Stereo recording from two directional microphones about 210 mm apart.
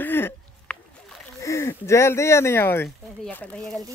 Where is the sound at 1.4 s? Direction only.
15° left (ahead or behind).